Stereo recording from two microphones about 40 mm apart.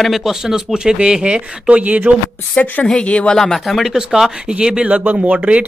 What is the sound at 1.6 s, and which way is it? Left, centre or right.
Speech, right.